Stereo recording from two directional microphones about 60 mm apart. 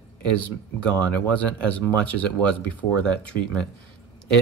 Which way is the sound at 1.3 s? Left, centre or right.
Left.